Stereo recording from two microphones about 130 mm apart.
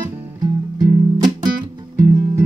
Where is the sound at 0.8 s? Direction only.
35° right (ahead or behind).